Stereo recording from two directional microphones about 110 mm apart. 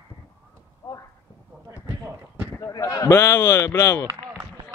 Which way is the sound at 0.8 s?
25° left (ahead or behind).